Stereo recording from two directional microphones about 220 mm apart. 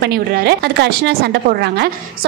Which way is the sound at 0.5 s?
50° right (ahead or behind).